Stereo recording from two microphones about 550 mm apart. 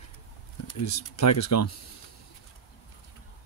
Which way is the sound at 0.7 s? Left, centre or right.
Left.